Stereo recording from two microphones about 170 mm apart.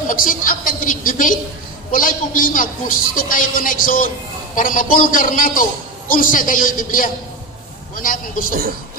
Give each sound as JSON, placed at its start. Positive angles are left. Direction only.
{"t": 0.1, "sound": "a woman's voice", "side_deg": 55}